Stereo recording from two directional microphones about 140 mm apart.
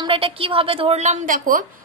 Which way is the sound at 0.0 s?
40° right (ahead or behind).